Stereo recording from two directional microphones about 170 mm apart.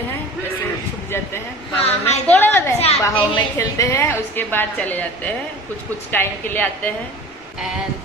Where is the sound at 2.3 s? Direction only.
15° left (ahead or behind).